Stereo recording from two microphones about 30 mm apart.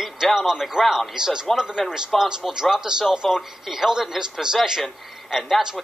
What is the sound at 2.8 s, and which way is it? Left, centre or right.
Speech, right.